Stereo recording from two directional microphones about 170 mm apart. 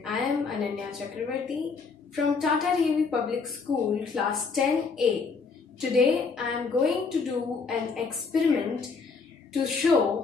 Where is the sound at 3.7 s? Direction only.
25° right (ahead or behind).